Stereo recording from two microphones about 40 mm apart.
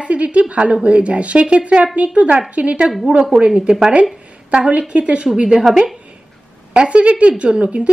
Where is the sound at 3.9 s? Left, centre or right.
Right.